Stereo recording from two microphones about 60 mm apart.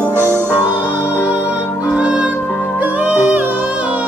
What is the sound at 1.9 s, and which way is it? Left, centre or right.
Music, right.